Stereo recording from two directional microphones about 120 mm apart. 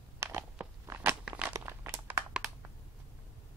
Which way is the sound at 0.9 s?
20° right (ahead or behind).